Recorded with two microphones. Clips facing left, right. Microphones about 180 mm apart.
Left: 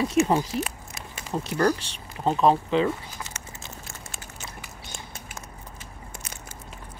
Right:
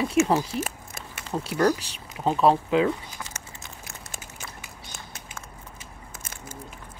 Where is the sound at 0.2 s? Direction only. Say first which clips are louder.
Even; 35° left (ahead or behind).